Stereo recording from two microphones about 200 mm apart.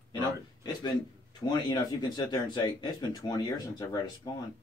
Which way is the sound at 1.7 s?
20° left (ahead or behind).